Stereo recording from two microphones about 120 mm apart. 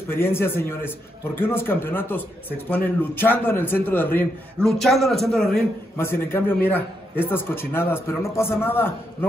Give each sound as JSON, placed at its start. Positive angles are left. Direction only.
{"t": 0.1, "sound": "a man's voice", "side_deg": 20}
{"t": 4.6, "sound": "a man's voice", "side_deg": 0}
{"t": 5.9, "sound": "a man's voice", "side_deg": 20}